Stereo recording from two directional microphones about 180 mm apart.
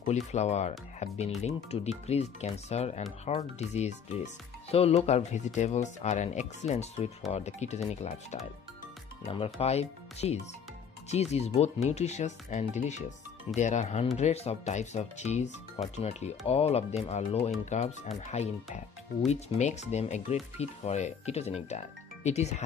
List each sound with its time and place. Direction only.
0.0 s speech: 40° left (ahead or behind)